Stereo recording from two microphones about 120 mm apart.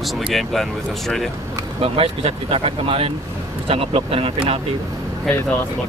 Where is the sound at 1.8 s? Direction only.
50° right (ahead or behind).